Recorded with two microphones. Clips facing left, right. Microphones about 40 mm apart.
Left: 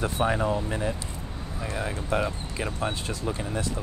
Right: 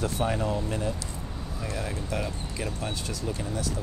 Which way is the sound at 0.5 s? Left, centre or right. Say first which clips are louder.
Left 2 dB; centre.